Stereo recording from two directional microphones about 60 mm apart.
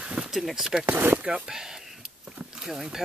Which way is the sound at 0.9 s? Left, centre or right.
Right.